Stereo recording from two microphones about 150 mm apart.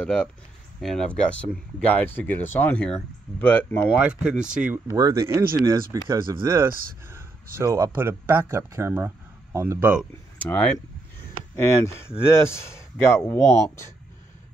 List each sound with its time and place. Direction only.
0.0 s speech: 5° left (ahead or behind)
3.9 s speech: 5° right (ahead or behind)
4.8 s speech: 25° right (ahead or behind)
7.5 s speech: 20° right (ahead or behind)
10.4 s speech: 10° left (ahead or behind)